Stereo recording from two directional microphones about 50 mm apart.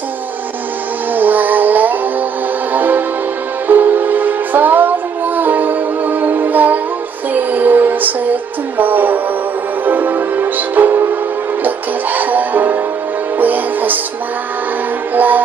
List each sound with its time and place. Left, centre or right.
1.1 s music: right
15.1 s music: right